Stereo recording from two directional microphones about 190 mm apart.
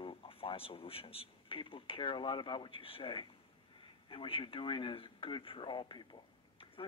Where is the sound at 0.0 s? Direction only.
30° left (ahead or behind).